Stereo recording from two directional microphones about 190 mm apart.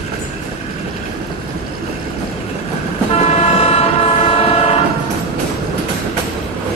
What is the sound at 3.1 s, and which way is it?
Vehicle, 30° left (ahead or behind).